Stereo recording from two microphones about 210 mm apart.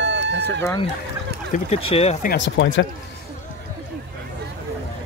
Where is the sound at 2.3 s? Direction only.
60° left (ahead or behind).